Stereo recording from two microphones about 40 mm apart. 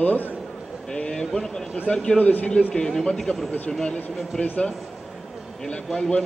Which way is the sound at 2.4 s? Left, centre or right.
Left.